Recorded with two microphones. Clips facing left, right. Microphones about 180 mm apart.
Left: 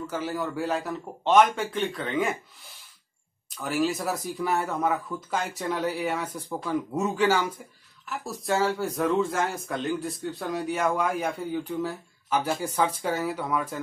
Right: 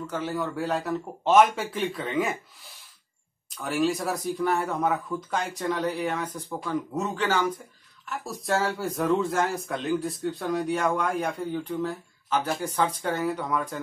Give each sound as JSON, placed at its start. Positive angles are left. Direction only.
{"t": 0.0, "sound": "speech", "side_deg": 5}
{"t": 3.5, "sound": "speech", "side_deg": 0}